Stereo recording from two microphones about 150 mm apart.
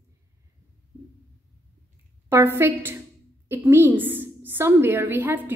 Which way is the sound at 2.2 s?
15° right (ahead or behind).